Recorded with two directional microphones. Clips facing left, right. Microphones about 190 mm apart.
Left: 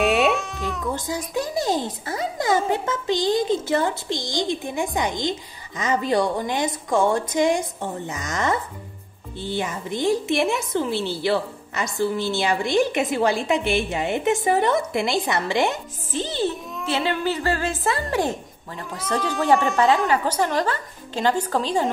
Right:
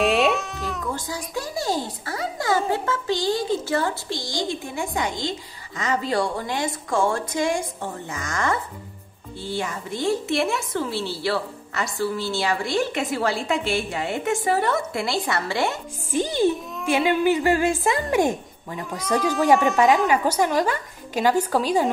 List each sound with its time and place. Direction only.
0.0 s baby cry: centre (ahead or behind)
0.9 s a woman's voice: 20° left (ahead or behind)
16.1 s a woman's voice: 15° right (ahead or behind)